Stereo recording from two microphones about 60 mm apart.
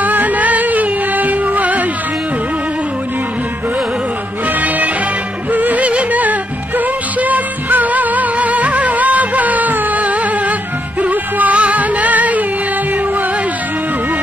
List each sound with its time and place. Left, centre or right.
0.0 s music: right
5.5 s music: right